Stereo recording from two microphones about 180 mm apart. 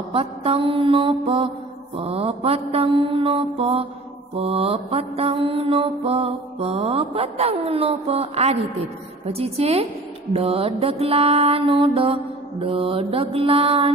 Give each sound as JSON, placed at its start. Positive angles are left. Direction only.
{"t": 0.1, "sound": "mantra", "side_deg": -30}